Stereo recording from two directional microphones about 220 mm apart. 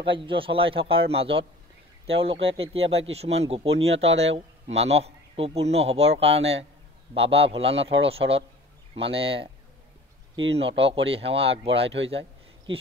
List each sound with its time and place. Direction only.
0.0 s speech: 25° right (ahead or behind)
11.1 s speech: 25° right (ahead or behind)
12.1 s a sound: 25° right (ahead or behind)